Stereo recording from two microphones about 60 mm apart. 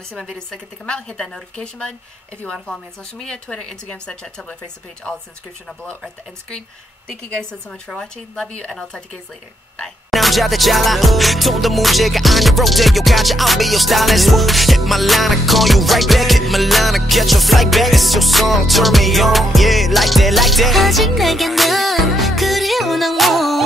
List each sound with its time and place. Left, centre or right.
0.2 s a woman's voice: centre
7.1 s a woman's voice: centre
10.1 s music: centre